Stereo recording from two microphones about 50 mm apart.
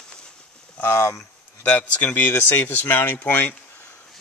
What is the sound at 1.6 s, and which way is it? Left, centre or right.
Speech, left.